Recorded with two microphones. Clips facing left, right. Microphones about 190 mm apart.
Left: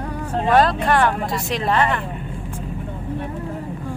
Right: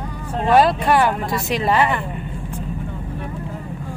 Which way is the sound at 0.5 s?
5° right (ahead or behind).